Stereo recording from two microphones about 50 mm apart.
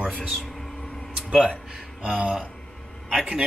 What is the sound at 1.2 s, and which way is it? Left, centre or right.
Speech, centre.